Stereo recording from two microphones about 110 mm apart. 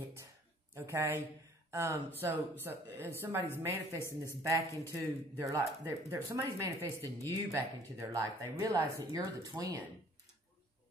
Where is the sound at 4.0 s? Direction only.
20° left (ahead or behind).